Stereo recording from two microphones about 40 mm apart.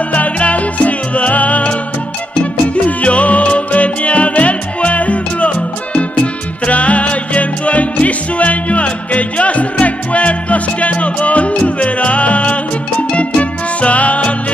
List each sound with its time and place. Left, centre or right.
0.1 s music: left